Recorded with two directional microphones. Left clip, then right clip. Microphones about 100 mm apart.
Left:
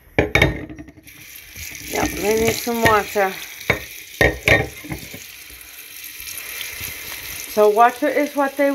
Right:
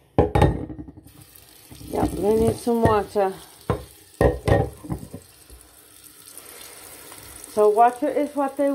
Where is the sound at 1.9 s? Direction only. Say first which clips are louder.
Left 2 dB; 10° right (ahead or behind).